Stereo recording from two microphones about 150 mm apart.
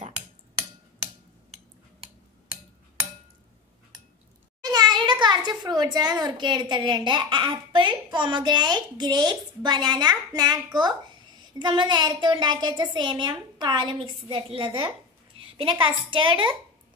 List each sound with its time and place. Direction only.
4.6 s a child's voice: 25° right (ahead or behind)